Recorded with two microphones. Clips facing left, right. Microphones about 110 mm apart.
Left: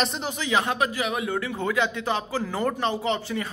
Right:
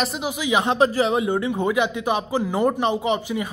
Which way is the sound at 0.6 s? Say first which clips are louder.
Right 7 dB; 30° right (ahead or behind).